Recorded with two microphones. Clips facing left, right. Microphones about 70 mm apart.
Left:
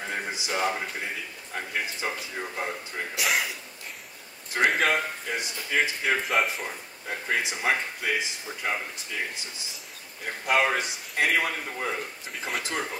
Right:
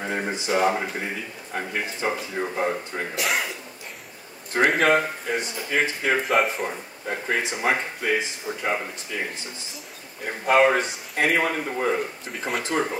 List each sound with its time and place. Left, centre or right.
0.0 s a sound: centre
0.5 s speech: centre
3.2 s speech: centre
4.6 s speech: centre
6.6 s speech: centre
10.2 s speech: centre
12.3 s speech: centre